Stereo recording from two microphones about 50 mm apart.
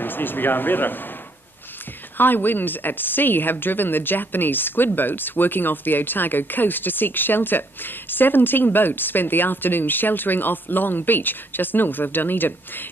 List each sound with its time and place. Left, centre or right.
0.0 s a woman's voice: left
2.1 s a woman's voice: left